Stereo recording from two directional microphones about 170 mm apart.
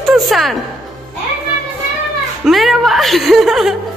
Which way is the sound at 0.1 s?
Centre (ahead or behind).